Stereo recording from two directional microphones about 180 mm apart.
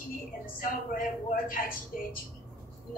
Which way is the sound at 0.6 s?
50° left (ahead or behind).